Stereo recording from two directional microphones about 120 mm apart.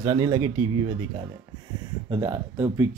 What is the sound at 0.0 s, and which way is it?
Speech, 25° right (ahead or behind).